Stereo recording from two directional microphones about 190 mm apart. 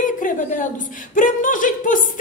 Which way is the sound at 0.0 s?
45° left (ahead or behind).